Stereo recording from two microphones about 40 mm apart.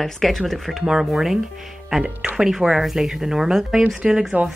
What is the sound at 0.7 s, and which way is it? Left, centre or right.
Speech, centre.